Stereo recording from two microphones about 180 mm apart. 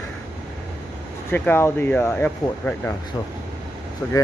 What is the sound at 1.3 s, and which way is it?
Speech, 10° left (ahead or behind).